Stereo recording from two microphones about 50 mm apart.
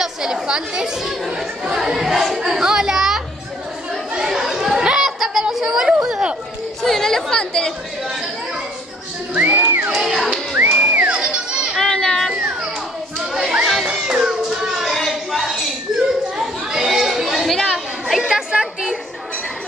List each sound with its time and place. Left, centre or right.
0.0 s speech: centre
1.8 s chatter: centre
6.8 s chatter: centre
7.3 s speech: centre
9.3 s music: right
9.9 s music: centre
10.5 s music: right
11.2 s children playing: centre
11.7 s children playing: centre
13.8 s a sound: centre
16.1 s chatter: centre
17.6 s a sound: centre
18.2 s chatter: centre